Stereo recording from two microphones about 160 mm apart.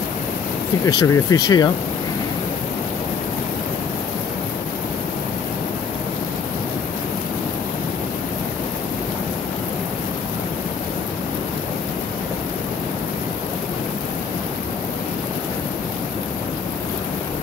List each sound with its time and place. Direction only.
0.8 s speech: 25° left (ahead or behind)